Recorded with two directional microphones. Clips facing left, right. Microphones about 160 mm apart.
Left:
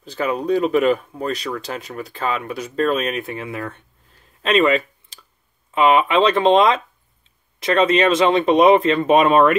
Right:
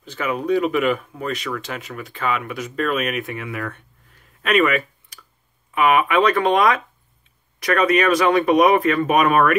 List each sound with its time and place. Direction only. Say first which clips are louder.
0.0 s speech: left 2 dB; 35° left (ahead or behind)
4.4 s a sound: left 2 dB; 25° left (ahead or behind)
5.8 s speech: left 2 dB; 25° left (ahead or behind)